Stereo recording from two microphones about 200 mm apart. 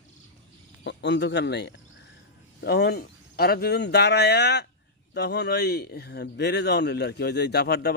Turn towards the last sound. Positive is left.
turn(degrees=55)  # may be behind; listen again after turning